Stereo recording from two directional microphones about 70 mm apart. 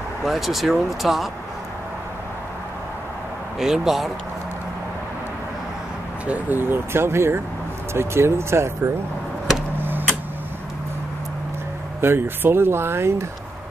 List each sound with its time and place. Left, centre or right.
0.2 s speech: centre
3.5 s speech: centre
6.2 s speech: right
6.6 s speech: right
9.8 s a sound: right
12.0 s speech: right